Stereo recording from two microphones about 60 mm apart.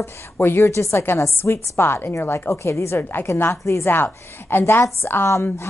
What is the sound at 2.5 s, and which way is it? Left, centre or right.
Speech, left.